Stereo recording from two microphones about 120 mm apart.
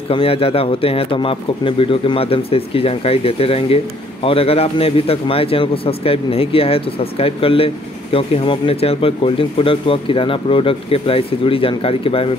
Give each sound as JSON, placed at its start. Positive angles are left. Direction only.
{"t": 0.1, "sound": "speech", "side_deg": 50}